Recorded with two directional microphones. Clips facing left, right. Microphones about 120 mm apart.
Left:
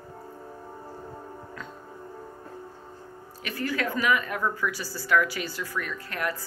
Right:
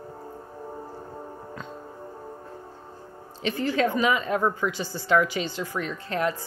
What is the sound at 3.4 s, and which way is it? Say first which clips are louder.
A woman's voice: right 5 dB; 25° right (ahead or behind).